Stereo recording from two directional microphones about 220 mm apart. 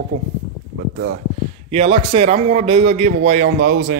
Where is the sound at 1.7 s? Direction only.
25° right (ahead or behind).